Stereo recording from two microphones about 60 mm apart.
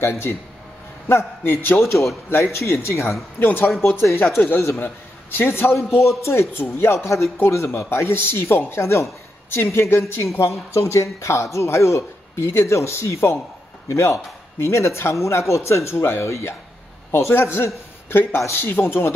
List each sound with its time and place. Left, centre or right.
0.0 s a man's voice: left
1.8 s a man's voice: left
2.2 s a man's voice: left
2.6 s speech: left
3.3 s a man's voice: left
4.0 s speech: left
4.4 s a man's voice: left
10.2 s a man's voice: left